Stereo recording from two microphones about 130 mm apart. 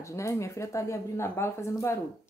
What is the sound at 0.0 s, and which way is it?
Speech, 25° left (ahead or behind).